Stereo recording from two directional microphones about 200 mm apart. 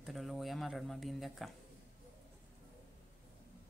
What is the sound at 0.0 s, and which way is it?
Speech, centre (ahead or behind).